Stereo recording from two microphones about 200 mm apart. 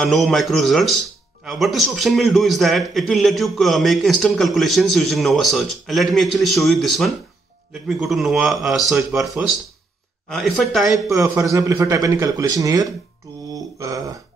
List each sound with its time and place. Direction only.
0.0 s a man's voice: centre (ahead or behind)
11.1 s speech: 15° right (ahead or behind)
13.2 s mantra: 15° right (ahead or behind)
13.7 s a sound: 15° right (ahead or behind)